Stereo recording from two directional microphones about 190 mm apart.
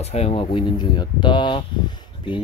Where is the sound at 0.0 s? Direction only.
35° left (ahead or behind).